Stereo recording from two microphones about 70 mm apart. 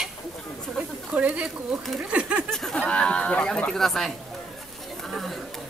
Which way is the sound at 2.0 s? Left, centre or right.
Centre.